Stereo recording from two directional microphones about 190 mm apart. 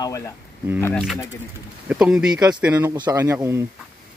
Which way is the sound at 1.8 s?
5° right (ahead or behind).